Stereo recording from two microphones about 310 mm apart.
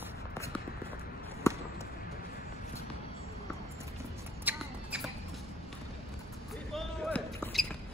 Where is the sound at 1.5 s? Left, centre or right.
Centre.